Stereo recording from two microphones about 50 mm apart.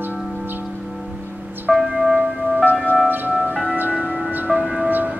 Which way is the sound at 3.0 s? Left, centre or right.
Right.